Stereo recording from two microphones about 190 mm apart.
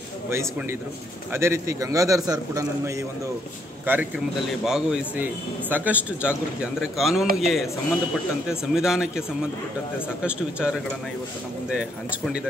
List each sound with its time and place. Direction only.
0.3 s a man's voice: 15° right (ahead or behind)